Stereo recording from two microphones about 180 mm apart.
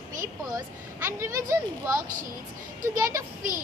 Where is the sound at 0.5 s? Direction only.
15° right (ahead or behind).